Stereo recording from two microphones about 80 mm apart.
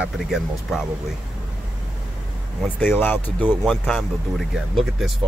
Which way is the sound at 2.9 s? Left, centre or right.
Left.